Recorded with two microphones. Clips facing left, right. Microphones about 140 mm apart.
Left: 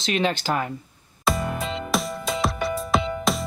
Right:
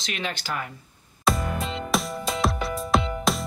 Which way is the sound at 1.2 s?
Centre (ahead or behind).